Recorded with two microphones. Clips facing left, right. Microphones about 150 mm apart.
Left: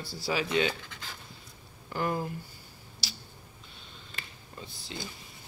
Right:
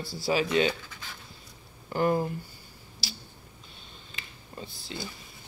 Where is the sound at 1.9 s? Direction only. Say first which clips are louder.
Right 6 dB; 30° right (ahead or behind).